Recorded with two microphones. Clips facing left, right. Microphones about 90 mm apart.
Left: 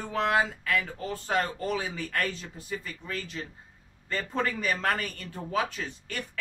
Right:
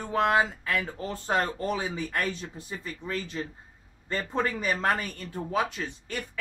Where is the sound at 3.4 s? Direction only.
25° right (ahead or behind).